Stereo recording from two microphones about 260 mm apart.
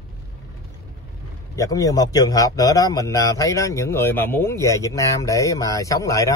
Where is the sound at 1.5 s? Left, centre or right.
Centre.